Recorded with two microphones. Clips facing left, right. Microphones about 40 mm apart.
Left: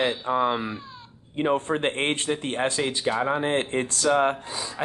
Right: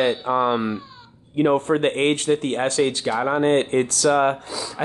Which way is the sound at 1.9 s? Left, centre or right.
Left.